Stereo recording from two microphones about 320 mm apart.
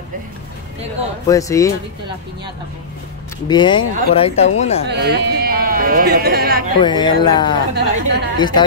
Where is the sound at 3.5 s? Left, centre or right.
Centre.